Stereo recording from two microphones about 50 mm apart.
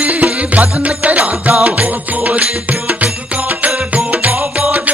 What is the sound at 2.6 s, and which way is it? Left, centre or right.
Music, right.